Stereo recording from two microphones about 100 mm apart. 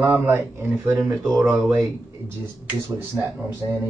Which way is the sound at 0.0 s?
25° right (ahead or behind).